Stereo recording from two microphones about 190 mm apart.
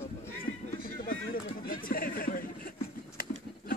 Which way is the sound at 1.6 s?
50° left (ahead or behind).